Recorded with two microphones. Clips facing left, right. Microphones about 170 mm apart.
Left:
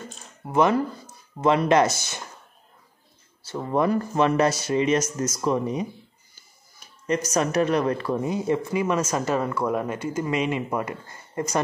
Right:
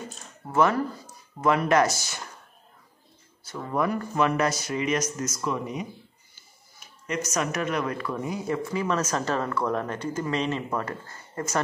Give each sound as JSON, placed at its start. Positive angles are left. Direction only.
{"t": 0.5, "sound": "speech", "side_deg": 20}
{"t": 1.4, "sound": "speech", "side_deg": 30}
{"t": 3.4, "sound": "speech", "side_deg": 30}